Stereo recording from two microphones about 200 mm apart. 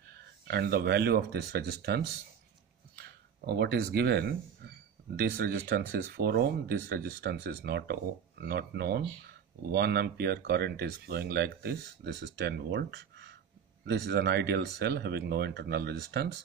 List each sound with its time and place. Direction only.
0.5 s speech: 55° right (ahead or behind)